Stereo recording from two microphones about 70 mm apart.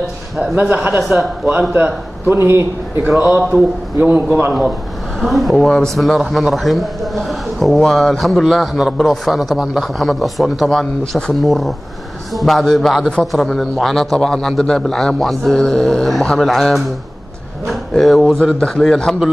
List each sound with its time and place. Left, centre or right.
0.4 s a man's voice: right
3.1 s a man's voice: centre
3.5 s a man's voice: right
5.2 s a man's voice: centre
17.6 s a sound: centre
18.2 s a man's voice: centre